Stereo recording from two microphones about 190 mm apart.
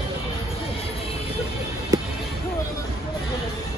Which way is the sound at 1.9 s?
20° right (ahead or behind).